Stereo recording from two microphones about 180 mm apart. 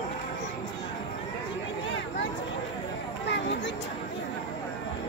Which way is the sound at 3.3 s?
75° left (ahead or behind).